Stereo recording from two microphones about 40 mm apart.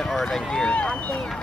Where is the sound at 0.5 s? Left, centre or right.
Left.